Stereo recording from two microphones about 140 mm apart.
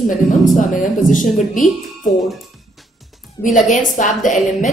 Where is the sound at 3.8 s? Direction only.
60° left (ahead or behind).